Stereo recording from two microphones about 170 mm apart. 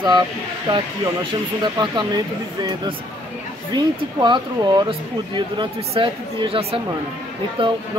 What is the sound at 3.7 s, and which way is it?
Speech, 25° right (ahead or behind).